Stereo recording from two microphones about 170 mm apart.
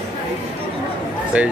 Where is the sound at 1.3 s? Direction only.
5° right (ahead or behind).